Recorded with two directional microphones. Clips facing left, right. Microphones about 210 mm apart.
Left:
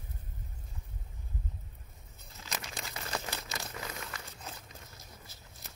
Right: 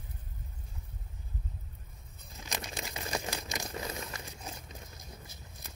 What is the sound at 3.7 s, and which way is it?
Crumpling, 25° right (ahead or behind).